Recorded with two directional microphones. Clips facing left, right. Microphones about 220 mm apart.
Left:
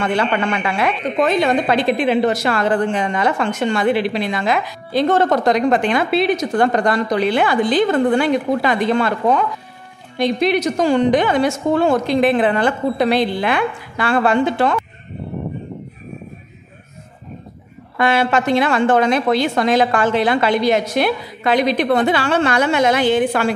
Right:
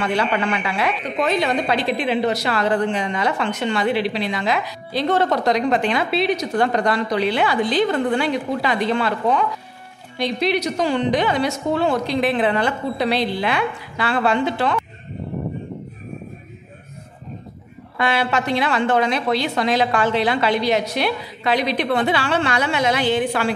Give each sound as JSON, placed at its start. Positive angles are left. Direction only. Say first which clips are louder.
{"t": 0.0, "sound": "a woman's voice", "louder": "left 2 dB", "side_deg": 50}
{"t": 17.9, "sound": "a woman's voice", "louder": "left 4 dB", "side_deg": 50}